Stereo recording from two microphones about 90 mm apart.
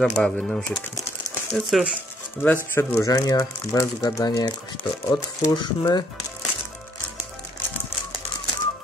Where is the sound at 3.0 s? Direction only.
40° left (ahead or behind).